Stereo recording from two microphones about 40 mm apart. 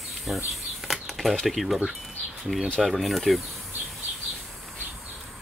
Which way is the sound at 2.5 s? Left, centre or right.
Left.